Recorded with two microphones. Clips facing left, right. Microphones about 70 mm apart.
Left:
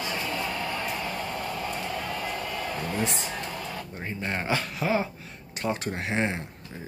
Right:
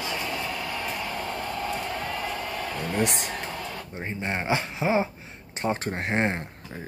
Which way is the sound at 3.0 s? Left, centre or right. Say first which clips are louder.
Right 5 dB; right.